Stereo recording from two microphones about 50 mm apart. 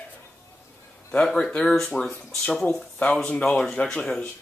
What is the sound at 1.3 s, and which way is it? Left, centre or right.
Speech, left.